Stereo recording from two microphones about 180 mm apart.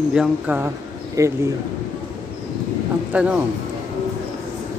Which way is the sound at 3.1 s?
5° right (ahead or behind).